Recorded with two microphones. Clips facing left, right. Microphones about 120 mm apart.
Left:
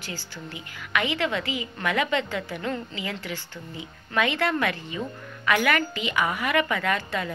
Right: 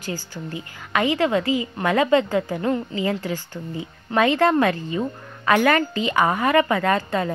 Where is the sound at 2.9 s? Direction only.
40° right (ahead or behind).